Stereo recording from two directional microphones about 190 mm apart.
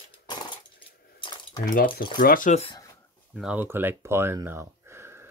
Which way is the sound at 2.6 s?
25° left (ahead or behind).